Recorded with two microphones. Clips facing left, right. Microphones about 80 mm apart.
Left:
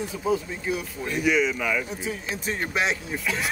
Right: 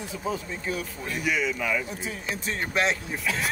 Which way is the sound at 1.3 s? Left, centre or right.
Left.